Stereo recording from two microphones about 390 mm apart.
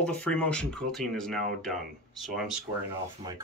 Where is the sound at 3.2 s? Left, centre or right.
Centre.